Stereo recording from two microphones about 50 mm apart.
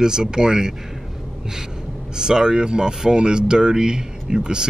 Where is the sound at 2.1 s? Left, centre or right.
Centre.